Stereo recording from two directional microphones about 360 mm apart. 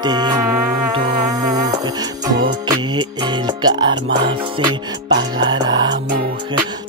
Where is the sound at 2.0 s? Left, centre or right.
Centre.